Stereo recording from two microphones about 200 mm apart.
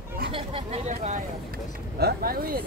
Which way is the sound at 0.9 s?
40° right (ahead or behind).